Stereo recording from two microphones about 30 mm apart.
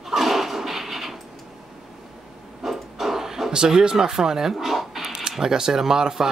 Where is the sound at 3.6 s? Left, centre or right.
Right.